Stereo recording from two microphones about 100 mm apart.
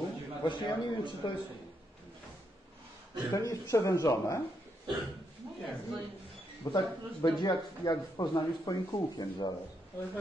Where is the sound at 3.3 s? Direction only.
30° left (ahead or behind).